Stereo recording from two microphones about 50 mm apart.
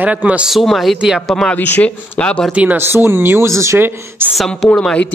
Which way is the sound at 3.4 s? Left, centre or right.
Right.